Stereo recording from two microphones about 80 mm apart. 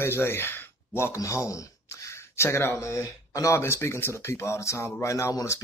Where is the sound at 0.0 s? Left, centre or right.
Left.